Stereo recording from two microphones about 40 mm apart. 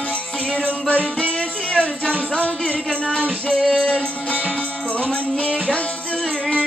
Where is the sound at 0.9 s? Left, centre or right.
Left.